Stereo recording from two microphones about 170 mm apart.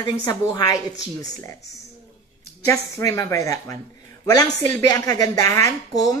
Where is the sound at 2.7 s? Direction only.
20° left (ahead or behind).